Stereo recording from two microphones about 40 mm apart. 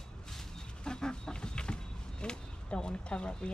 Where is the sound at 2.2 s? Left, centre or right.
Left.